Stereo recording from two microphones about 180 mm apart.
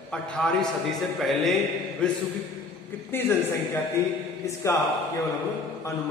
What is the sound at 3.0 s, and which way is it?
Speech, 10° left (ahead or behind).